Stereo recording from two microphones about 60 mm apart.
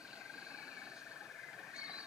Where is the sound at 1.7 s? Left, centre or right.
Centre.